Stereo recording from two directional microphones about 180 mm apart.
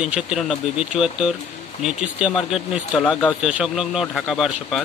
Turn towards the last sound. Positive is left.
turn(degrees=0)  # may be behind; listen again after turning